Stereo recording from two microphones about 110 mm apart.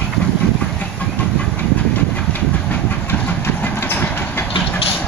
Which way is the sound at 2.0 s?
15° left (ahead or behind).